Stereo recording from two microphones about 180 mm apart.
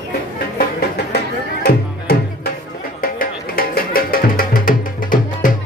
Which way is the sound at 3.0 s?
55° left (ahead or behind).